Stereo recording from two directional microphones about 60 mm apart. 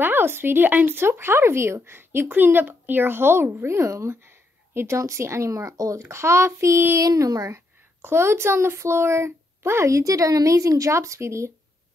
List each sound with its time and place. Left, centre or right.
0.0 s speech: right
7.0 s speech: right
7.5 s speech: right